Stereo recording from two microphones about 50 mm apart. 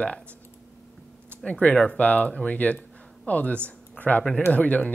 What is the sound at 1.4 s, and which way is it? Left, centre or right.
Speech, left.